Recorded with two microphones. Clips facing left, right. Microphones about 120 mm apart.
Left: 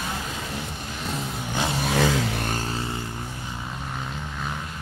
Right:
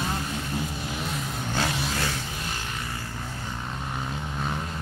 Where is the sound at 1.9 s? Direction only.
90° left.